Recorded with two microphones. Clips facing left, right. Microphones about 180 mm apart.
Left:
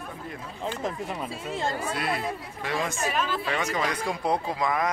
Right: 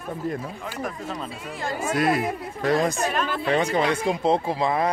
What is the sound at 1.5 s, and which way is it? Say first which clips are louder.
Speech: left 2 dB; 25° left (ahead or behind).